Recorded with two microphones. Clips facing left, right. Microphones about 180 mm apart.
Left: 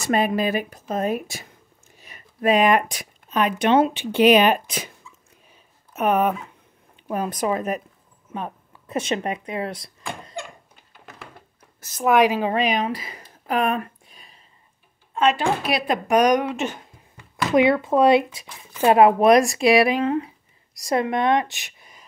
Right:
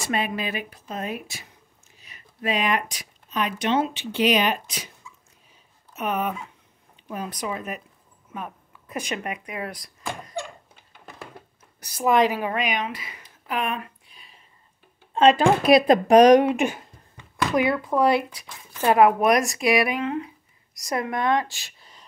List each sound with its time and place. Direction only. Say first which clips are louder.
0.1 s speech: left 7 dB; 40° left (ahead or behind)
5.9 s speech: left 7 dB; 50° left (ahead or behind)
8.3 s speech: left 4 dB; 30° left (ahead or behind)
12.1 s a woman's voice: left 2 dB; centre (ahead or behind)
12.4 s speech: left 5 dB; 30° left (ahead or behind)
15.7 s speech: right 8 dB; 35° right (ahead or behind)
16.4 s speech: right 4 dB; 10° right (ahead or behind)
17.5 s speech: left 6 dB; 20° left (ahead or behind)